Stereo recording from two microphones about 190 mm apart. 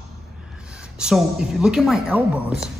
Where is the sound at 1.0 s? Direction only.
5° right (ahead or behind).